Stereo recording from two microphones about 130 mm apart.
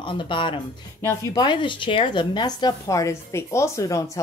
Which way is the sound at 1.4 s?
35° left (ahead or behind).